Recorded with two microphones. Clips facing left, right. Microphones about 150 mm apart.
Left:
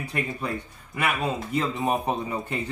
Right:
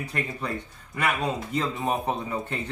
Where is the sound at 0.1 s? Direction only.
5° left (ahead or behind).